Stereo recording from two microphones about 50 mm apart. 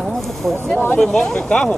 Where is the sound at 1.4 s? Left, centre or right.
Left.